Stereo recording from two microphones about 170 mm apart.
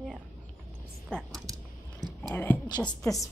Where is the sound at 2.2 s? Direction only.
10° left (ahead or behind).